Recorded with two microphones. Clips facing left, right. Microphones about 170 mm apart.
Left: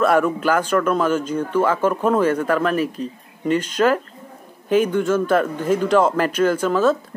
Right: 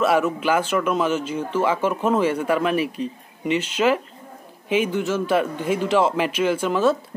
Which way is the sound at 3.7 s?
10° right (ahead or behind).